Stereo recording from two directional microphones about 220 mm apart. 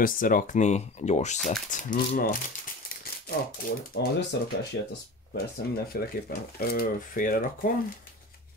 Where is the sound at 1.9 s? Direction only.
40° left (ahead or behind).